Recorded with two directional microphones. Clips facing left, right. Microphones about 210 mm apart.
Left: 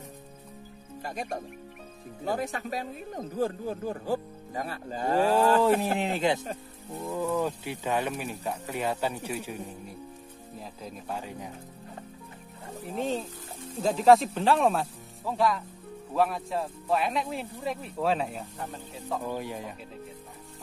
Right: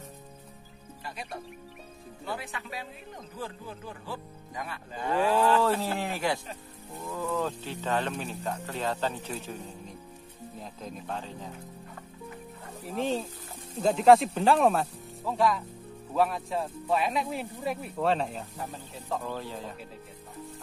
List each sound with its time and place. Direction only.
1.0 s speech: 45° left (ahead or behind)
5.6 s speech: 20° left (ahead or behind)
12.9 s speech: centre (ahead or behind)
19.2 s speech: 15° left (ahead or behind)